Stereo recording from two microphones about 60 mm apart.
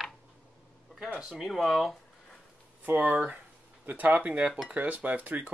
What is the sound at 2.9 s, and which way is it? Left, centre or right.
Speech, right.